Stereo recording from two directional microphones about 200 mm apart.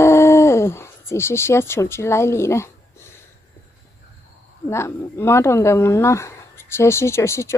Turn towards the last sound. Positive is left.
turn(degrees=15)  # may be behind; listen again after turning